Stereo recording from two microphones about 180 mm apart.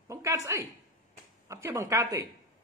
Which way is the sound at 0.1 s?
15° right (ahead or behind).